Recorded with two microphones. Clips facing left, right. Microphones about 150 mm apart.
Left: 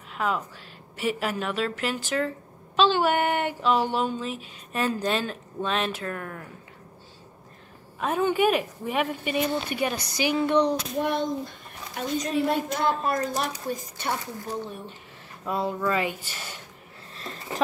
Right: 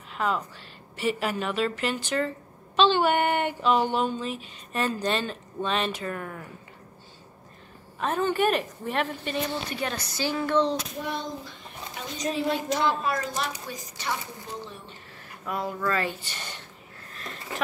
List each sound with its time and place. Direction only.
0.1 s a woman's voice: centre (ahead or behind)
8.0 s speech: 10° left (ahead or behind)
11.0 s a child's voice: 50° left (ahead or behind)
15.4 s speech: 25° left (ahead or behind)
15.9 s speech: 15° left (ahead or behind)
17.2 s a sound: 30° left (ahead or behind)